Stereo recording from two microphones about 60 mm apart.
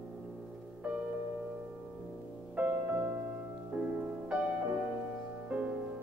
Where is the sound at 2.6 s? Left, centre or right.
Right.